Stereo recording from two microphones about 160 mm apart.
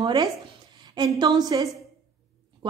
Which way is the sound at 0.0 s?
30° right (ahead or behind).